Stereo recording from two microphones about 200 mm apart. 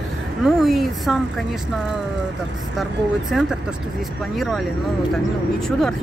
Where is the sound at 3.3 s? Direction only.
Centre (ahead or behind).